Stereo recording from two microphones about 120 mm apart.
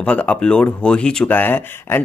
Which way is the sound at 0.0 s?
10° left (ahead or behind).